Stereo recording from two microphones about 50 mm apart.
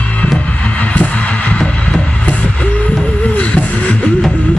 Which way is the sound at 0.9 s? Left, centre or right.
Left.